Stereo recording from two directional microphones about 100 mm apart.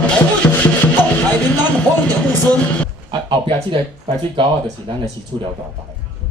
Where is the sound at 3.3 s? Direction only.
60° right (ahead or behind).